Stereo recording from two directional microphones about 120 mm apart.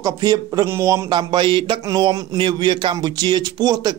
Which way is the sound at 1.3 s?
40° right (ahead or behind).